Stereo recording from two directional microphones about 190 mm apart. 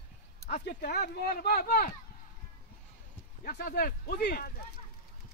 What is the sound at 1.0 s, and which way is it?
Speech, 55° left (ahead or behind).